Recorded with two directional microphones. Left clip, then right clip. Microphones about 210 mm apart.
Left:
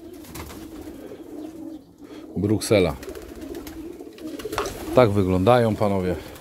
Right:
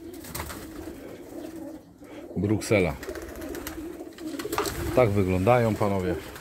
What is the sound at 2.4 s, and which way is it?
Speech, 25° left (ahead or behind).